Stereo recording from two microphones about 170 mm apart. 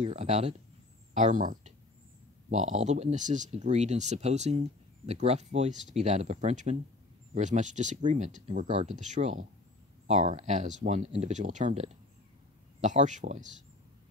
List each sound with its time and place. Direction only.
0.0 s speech: 40° right (ahead or behind)